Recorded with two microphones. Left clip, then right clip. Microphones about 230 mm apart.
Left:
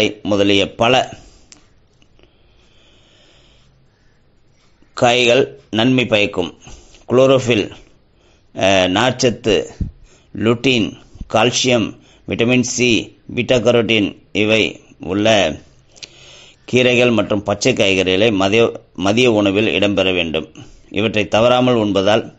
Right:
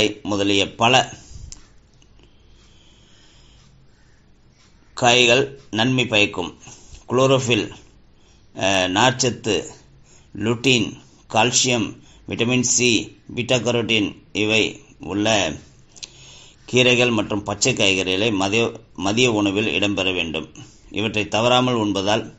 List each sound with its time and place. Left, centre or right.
0.0 s speech: left
4.9 s a man's voice: left